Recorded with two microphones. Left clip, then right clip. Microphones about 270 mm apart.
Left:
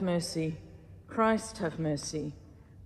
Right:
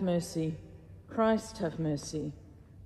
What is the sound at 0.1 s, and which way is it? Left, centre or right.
Speech, centre.